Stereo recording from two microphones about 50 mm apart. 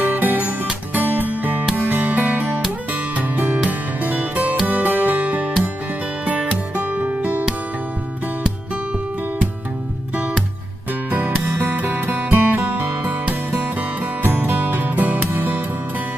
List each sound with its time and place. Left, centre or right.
0.0 s music: right
11.1 s music: right
13.0 s music: right